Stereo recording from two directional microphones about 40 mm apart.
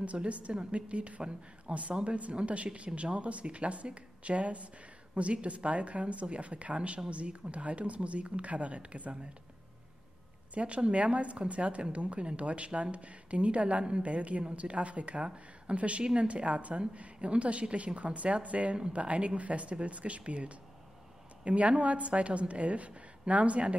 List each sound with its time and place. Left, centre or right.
0.0 s speech: right
10.5 s speech: right